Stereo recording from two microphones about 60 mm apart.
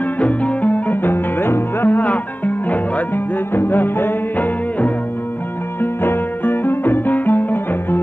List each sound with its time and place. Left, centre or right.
0.2 s music: left